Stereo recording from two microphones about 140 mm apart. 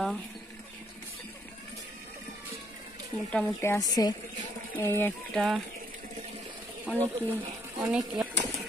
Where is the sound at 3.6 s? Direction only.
20° left (ahead or behind).